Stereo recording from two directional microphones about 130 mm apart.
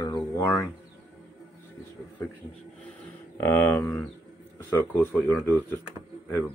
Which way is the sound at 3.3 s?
15° left (ahead or behind).